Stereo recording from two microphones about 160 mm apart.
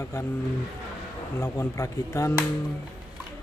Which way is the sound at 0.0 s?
20° left (ahead or behind).